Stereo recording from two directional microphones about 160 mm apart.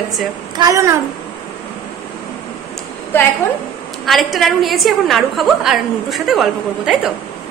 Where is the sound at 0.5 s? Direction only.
20° right (ahead or behind).